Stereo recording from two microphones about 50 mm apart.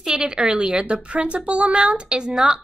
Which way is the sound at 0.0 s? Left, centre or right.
Centre.